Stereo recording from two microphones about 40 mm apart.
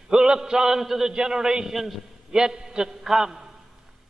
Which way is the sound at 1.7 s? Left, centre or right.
Centre.